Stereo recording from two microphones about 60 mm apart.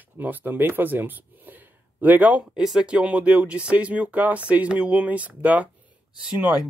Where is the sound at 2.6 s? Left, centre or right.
Centre.